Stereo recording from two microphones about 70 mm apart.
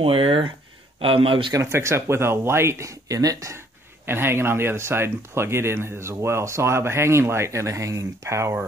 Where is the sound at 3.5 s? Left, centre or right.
Right.